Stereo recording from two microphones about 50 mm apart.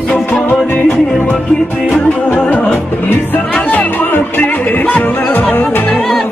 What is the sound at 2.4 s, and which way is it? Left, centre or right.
Music, left.